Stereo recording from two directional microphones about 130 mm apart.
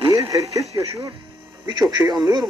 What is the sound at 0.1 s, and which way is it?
Radio, 25° right (ahead or behind).